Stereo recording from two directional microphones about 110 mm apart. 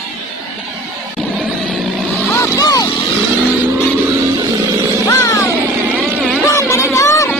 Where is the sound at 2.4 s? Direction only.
30° left (ahead or behind).